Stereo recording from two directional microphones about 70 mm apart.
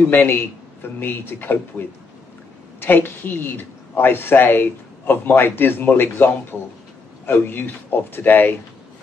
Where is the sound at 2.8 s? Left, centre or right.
Left.